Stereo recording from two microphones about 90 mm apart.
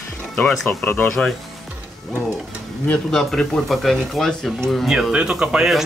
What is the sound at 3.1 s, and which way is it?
Speech, 5° left (ahead or behind).